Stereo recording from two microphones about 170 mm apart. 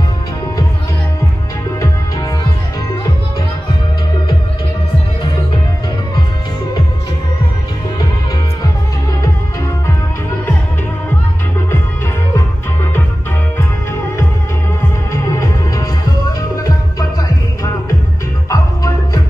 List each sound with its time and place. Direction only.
15.1 s music: 20° left (ahead or behind)
18.5 s music: 20° left (ahead or behind)